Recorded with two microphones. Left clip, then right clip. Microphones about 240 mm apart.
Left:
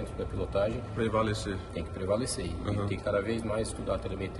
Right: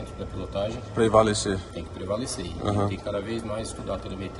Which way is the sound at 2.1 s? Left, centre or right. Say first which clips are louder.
Right 1 dB; centre.